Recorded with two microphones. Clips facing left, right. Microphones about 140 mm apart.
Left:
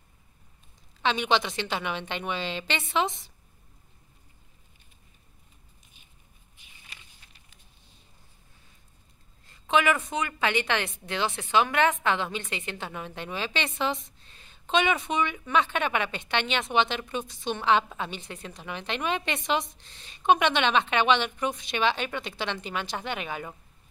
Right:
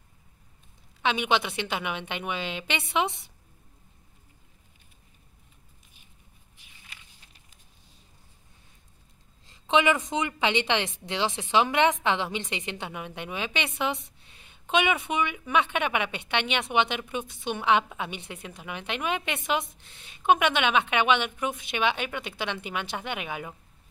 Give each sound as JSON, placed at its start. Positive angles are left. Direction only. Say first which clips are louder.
{"t": 1.0, "sound": "a woman's voice", "louder": "even", "side_deg": -10}
{"t": 9.5, "sound": "a woman's voice", "louder": "right 1 dB", "side_deg": -20}